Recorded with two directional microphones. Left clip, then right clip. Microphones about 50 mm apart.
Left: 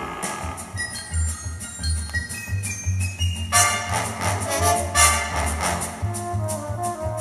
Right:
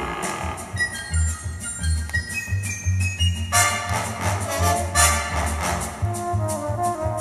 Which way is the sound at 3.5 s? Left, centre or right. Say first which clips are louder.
Left 1 dB; left.